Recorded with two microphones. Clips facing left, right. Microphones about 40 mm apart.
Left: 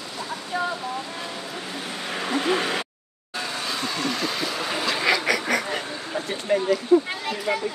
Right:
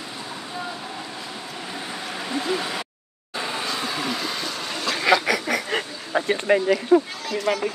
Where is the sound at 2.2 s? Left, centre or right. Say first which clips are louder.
Left 3 dB; left.